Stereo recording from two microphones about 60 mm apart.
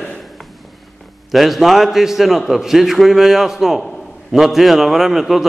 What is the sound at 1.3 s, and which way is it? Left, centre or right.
A man's voice, centre.